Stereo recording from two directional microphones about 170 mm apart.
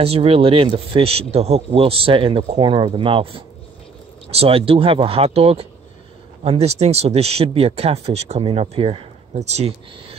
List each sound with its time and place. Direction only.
0.0 s speech: 35° right (ahead or behind)